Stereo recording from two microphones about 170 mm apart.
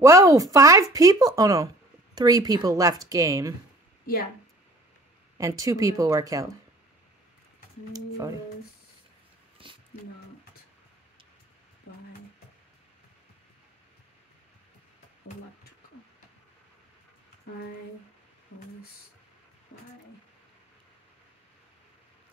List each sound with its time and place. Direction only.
0.0 s speech: 20° right (ahead or behind)
5.4 s speech: 20° right (ahead or behind)
9.6 s a sound: 30° right (ahead or behind)